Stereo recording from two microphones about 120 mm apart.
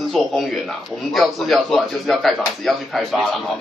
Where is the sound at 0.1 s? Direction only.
Centre (ahead or behind).